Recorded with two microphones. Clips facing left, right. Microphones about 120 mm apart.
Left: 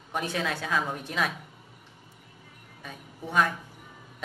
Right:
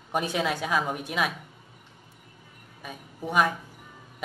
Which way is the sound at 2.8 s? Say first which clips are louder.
Right 3 dB; 10° right (ahead or behind).